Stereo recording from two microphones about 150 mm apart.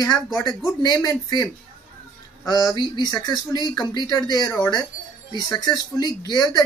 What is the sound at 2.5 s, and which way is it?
Speech, 25° left (ahead or behind).